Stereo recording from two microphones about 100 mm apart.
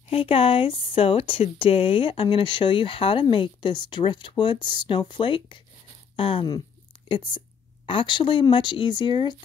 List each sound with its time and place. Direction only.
0.1 s speech: 70° left (ahead or behind); by 9.3 s 50° left (ahead or behind)